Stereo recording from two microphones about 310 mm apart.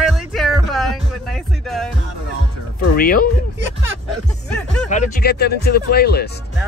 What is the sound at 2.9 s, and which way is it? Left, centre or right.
Speech, left.